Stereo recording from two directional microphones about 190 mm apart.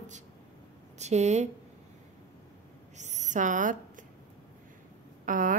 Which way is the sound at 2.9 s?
40° right (ahead or behind).